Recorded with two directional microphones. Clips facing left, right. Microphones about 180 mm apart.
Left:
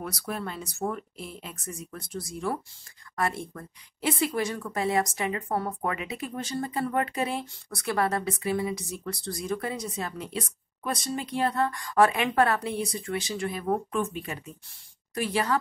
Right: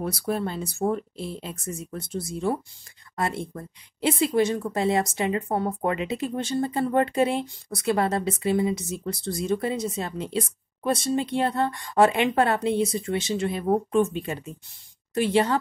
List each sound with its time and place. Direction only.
0.0 s speech: 30° right (ahead or behind)